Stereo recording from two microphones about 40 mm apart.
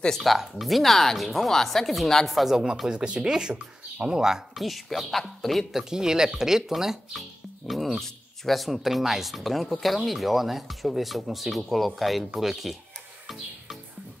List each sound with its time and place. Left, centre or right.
0.2 s speech: centre
2.9 s speech: right
4.6 s speech: centre
5.7 s speech: centre
7.2 s music: centre
8.0 s speech: centre